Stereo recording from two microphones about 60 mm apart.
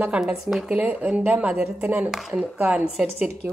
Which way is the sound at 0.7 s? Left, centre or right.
Right.